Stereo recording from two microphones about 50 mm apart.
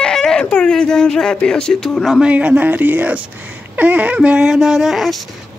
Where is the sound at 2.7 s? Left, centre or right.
Right.